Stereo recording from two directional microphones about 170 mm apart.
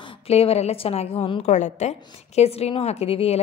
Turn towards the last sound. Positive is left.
turn(degrees=35)  # may be behind; listen again after turning